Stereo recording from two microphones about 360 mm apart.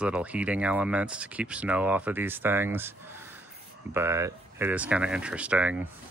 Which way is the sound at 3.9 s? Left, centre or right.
Centre.